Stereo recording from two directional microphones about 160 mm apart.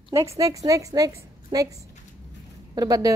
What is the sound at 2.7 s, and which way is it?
Speech, 25° right (ahead or behind).